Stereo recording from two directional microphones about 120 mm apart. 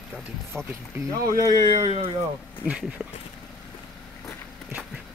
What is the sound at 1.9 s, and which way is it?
Speech, 60° right (ahead or behind).